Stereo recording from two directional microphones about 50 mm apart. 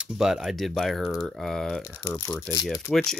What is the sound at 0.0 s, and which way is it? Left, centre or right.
Speech, centre.